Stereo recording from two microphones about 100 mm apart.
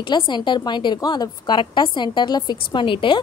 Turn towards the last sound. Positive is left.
turn(degrees=55)  # may be behind; listen again after turning